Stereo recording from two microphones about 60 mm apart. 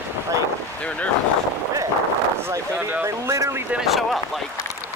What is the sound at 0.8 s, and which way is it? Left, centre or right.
Speech, left.